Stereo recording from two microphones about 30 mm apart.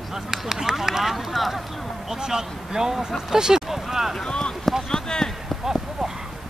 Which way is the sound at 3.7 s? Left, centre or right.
Centre.